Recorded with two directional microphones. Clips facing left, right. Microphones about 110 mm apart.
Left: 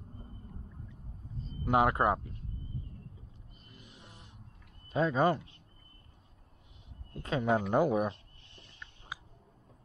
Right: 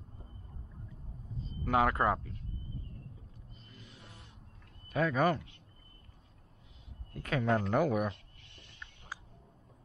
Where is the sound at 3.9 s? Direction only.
25° left (ahead or behind).